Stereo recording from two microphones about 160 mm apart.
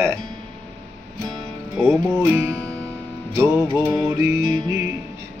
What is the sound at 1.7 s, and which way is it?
Speech, 10° right (ahead or behind).